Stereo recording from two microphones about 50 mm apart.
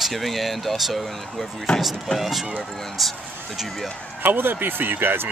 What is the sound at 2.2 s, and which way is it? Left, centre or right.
Speech, centre.